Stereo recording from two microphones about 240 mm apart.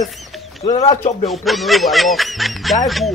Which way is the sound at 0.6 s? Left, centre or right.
Left.